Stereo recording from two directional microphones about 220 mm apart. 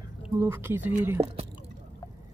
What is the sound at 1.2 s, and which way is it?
Speech, 30° right (ahead or behind).